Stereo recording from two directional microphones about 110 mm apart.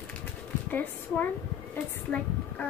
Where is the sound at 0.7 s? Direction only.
15° left (ahead or behind).